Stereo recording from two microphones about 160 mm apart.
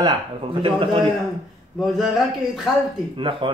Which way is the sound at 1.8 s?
Centre (ahead or behind).